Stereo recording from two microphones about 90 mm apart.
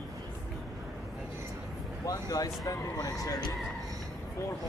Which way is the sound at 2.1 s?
45° left (ahead or behind).